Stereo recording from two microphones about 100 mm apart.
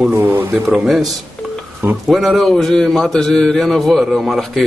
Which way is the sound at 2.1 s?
Centre (ahead or behind).